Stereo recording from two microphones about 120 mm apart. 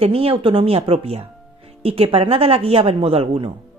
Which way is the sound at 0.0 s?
55° right (ahead or behind).